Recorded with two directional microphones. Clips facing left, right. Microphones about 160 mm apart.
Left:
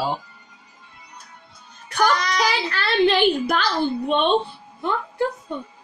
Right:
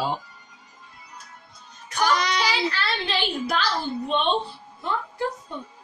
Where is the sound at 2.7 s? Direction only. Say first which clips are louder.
Left 9 dB; 60° left (ahead or behind).